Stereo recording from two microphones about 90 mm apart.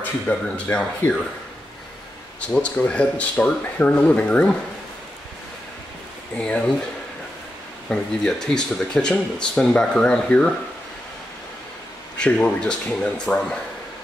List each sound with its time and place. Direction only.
0.0 s speech: 15° left (ahead or behind)
2.4 s speech: 15° left (ahead or behind)
6.3 s speech: 15° left (ahead or behind)
7.9 s speech: 5° left (ahead or behind)
12.2 s speech: 10° left (ahead or behind)